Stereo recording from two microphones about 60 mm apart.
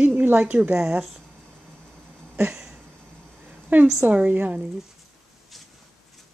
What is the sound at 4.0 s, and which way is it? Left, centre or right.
Speech, right.